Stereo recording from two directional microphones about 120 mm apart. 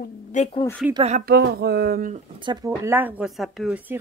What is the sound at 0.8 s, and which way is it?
Speech, 5° right (ahead or behind).